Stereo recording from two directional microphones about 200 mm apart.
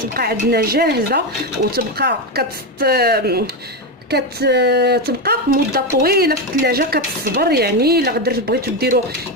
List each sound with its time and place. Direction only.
0.1 s speech: 50° right (ahead or behind)